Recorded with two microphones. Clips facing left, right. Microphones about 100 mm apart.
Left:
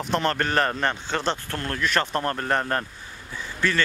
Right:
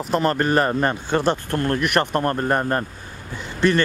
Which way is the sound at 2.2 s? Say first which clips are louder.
Right 5 dB; 25° right (ahead or behind).